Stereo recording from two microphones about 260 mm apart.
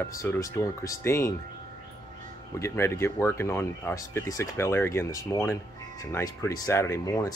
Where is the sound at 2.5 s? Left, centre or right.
Centre.